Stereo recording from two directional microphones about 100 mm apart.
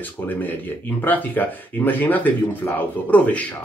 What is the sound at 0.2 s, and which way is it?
Speech, 20° left (ahead or behind).